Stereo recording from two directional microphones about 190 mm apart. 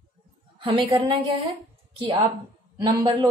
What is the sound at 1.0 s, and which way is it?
Speech, 30° right (ahead or behind).